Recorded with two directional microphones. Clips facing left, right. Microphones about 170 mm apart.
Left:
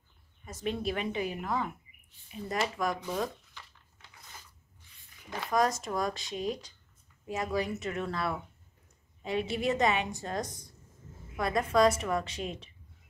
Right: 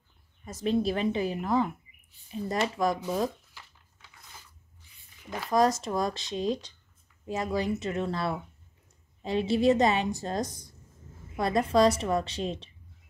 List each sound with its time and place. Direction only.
0.7 s speech: 35° right (ahead or behind)
3.6 s a sound: 5° right (ahead or behind)
5.5 s speech: 30° right (ahead or behind)